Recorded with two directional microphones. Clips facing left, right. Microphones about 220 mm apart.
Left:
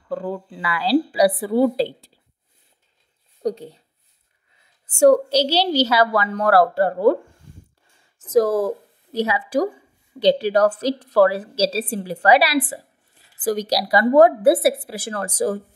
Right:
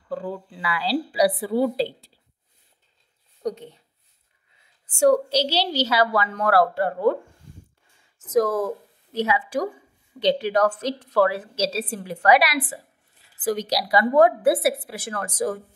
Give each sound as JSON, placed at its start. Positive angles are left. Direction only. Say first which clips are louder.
{"t": 0.1, "sound": "a woman's voice", "louder": "left 3 dB", "side_deg": 50}
{"t": 3.4, "sound": "a woman's voice", "louder": "left 4 dB", "side_deg": 35}
{"t": 4.9, "sound": "a woman's voice", "louder": "left 4 dB", "side_deg": 45}
{"t": 8.2, "sound": "a woman's voice", "louder": "left 4 dB", "side_deg": 30}